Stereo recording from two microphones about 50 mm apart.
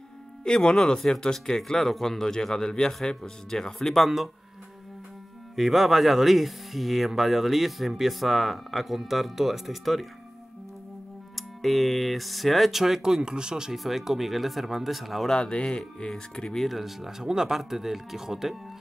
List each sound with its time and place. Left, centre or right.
0.4 s speech: centre
5.6 s speech: centre
11.3 s speech: centre
15.3 s speech: centre
16.1 s speech: centre